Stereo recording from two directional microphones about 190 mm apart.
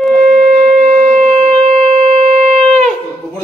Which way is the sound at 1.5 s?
30° right (ahead or behind).